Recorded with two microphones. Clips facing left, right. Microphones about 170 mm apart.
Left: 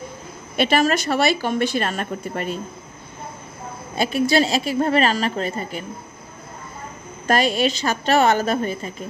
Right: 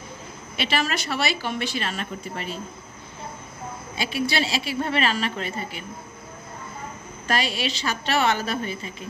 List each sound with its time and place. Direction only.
0.6 s a woman's voice: 50° left (ahead or behind)
3.9 s a woman's voice: 50° left (ahead or behind)
7.2 s a woman's voice: 45° left (ahead or behind)